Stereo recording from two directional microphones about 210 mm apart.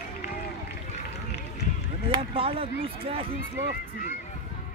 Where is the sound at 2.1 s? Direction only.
25° right (ahead or behind).